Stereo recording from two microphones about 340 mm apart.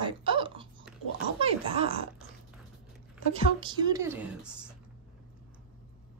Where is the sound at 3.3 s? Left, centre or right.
Centre.